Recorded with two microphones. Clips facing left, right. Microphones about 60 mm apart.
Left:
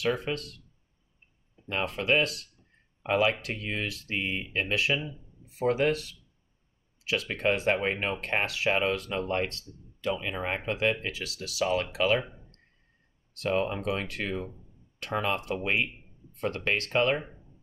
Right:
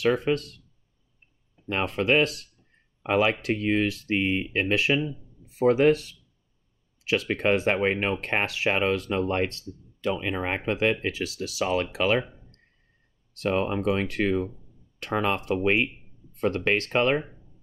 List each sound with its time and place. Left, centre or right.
0.0 s speech: right
1.7 s speech: right
11.6 s speech: right